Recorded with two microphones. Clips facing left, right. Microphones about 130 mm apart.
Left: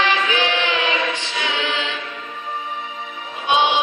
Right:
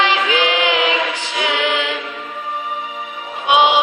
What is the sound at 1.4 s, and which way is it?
Music, 60° right (ahead or behind).